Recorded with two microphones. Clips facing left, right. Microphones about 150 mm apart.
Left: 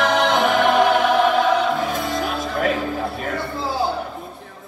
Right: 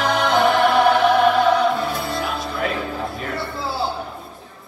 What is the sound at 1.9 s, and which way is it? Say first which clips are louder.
Music: left 1 dB; 45° left (ahead or behind).